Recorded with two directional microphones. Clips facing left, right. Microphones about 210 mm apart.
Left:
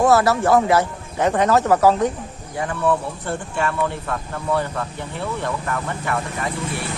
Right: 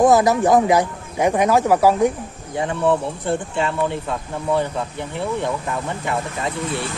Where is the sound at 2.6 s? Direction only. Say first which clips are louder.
Right 2 dB; 20° right (ahead or behind).